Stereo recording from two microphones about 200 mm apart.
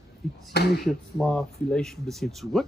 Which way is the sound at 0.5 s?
50° left (ahead or behind).